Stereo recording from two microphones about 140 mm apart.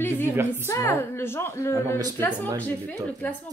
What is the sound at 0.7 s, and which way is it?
Speech, 20° left (ahead or behind).